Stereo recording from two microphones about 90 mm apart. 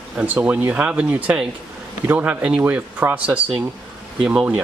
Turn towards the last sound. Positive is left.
turn(degrees=-15)  # may be behind; listen again after turning